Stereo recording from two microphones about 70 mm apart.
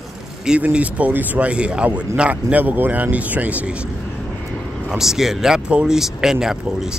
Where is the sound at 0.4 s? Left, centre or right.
Centre.